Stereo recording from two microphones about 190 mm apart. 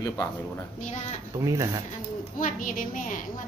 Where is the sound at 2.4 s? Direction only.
45° left (ahead or behind).